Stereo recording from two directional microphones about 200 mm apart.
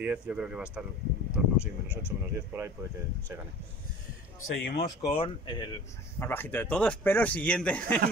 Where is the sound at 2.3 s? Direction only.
10° right (ahead or behind).